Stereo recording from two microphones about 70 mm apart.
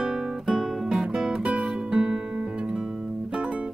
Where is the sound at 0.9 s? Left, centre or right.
Centre.